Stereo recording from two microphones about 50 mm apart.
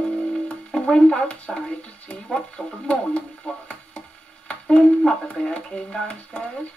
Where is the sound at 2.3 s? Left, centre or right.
Left.